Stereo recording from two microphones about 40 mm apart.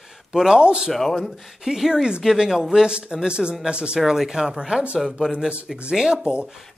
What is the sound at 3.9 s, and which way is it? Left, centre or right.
A man's voice, centre.